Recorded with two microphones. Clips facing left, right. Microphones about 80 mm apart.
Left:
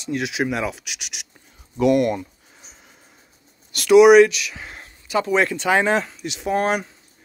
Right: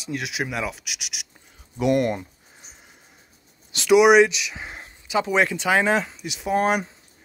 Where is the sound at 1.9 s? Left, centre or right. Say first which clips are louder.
Left 3 dB; right.